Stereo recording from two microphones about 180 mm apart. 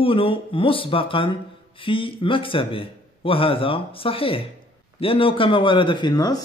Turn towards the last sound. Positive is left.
turn(degrees=20)  # may be behind; listen again after turning